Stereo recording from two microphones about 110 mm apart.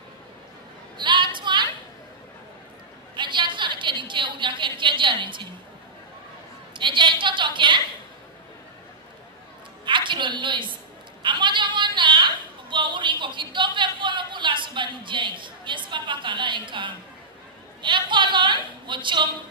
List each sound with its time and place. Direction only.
0.9 s a sound: 45° right (ahead or behind)
3.2 s a woman's voice: 45° right (ahead or behind)
6.8 s a woman's voice: 45° right (ahead or behind)
9.8 s a woman's voice: 45° right (ahead or behind)
11.2 s a sound: 45° right (ahead or behind)
17.8 s a woman's voice: 45° right (ahead or behind)